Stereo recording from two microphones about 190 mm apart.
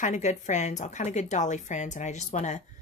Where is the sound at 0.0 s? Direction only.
40° left (ahead or behind).